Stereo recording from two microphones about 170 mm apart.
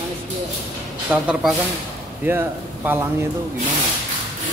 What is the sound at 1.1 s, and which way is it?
Speech, 5° right (ahead or behind).